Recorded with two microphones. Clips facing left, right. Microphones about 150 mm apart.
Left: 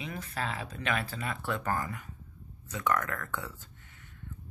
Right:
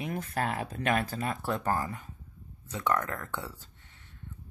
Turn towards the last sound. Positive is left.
turn(degrees=-30)  # may be behind; listen again after turning